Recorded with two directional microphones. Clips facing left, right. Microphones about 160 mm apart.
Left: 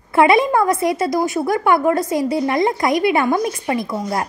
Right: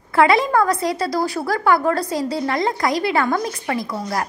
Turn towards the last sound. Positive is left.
turn(degrees=25)  # may be behind; listen again after turning